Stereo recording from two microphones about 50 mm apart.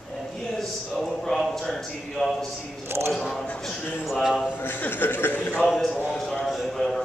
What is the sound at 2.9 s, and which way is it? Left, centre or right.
Speech, right.